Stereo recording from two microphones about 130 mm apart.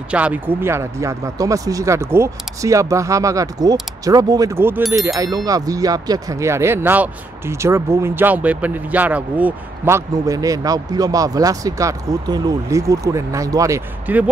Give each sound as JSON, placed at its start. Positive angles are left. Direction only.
{"t": 0.1, "sound": "speech", "side_deg": -10}
{"t": 14.0, "sound": "speech", "side_deg": -10}